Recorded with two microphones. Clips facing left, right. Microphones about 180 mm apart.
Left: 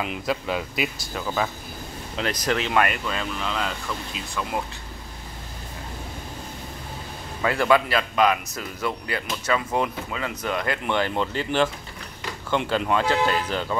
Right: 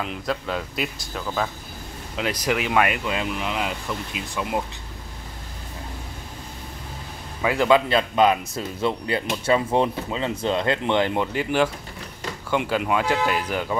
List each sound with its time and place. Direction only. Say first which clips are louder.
0.0 s speech: left 1 dB; 10° left (ahead or behind)
2.1 s speech: right 1 dB; 10° right (ahead or behind)
7.4 s speech: right 2 dB; 20° right (ahead or behind)